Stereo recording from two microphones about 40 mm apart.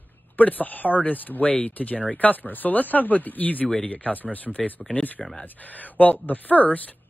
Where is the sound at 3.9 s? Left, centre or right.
Left.